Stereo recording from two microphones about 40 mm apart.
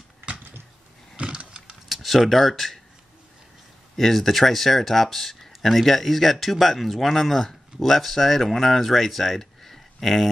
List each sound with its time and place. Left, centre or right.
1.1 s a sound: right
1.9 s speech: centre
3.9 s speech: centre
10.0 s speech: centre